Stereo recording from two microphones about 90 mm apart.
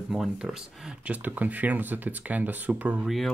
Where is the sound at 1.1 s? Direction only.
15° right (ahead or behind).